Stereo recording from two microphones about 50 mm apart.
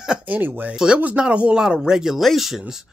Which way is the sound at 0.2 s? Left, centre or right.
Right.